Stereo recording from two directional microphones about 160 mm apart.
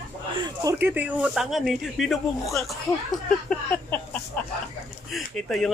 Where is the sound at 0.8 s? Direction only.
10° right (ahead or behind).